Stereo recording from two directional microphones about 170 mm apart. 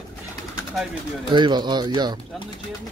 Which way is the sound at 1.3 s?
25° right (ahead or behind).